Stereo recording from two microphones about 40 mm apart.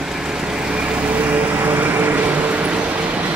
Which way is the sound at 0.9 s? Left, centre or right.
Right.